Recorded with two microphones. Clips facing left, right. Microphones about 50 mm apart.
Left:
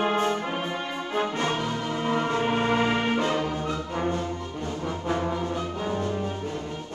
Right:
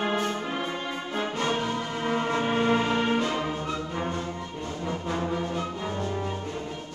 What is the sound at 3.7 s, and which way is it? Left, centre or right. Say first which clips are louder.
Brass instrument: left 2 dB; left.